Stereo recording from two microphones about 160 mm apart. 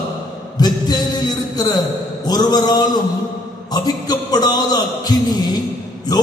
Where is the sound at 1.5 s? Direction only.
25° left (ahead or behind).